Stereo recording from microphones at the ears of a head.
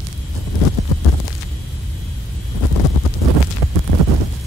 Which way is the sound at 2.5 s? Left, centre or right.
Left.